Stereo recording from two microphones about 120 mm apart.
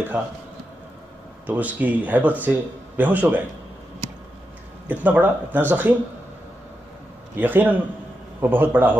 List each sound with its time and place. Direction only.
0.1 s speech: 15° right (ahead or behind)
1.4 s speech: 15° right (ahead or behind)
4.8 s speech: 10° right (ahead or behind)
7.3 s speech: 15° right (ahead or behind)